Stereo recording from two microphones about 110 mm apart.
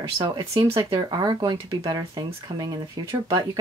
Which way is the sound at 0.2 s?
45° right (ahead or behind).